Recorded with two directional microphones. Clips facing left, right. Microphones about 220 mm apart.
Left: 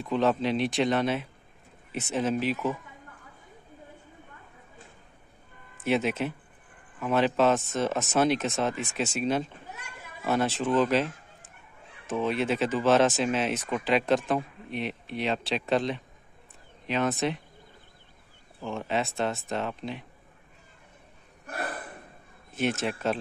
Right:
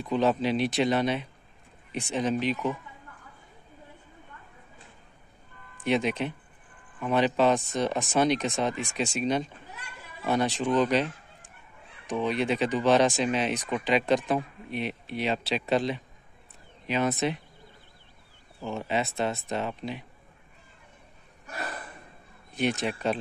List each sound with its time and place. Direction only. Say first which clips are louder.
0.0 s speech: even; centre (ahead or behind)
5.9 s speech: even; 5° left (ahead or behind)
12.1 s speech: even; centre (ahead or behind)
18.6 s speech: even; centre (ahead or behind)
21.5 s a sound: left 3 dB; 55° left (ahead or behind)
22.5 s speech: even; centre (ahead or behind)